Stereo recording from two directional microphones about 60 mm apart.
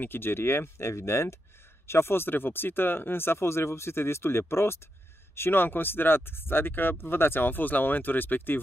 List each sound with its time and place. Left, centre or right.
0.0 s speech: left